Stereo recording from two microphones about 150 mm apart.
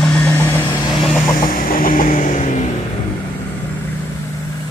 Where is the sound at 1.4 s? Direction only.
70° left (ahead or behind).